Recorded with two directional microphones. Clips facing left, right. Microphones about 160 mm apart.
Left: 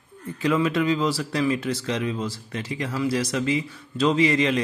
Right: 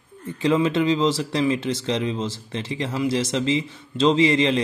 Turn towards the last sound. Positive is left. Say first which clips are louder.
# right 2 dB
turn(degrees=-30)  # may be behind; listen again after turning